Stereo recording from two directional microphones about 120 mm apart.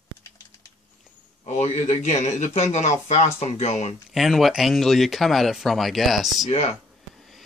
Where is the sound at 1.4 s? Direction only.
70° left (ahead or behind).